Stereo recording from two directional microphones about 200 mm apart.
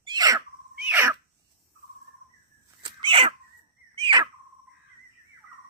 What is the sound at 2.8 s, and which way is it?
Dog, 25° right (ahead or behind).